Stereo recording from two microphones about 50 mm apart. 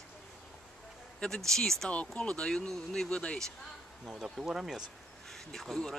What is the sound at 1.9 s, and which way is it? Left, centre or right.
Speech, left.